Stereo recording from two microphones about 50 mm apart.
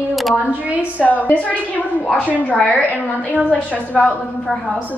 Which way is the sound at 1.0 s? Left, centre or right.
Left.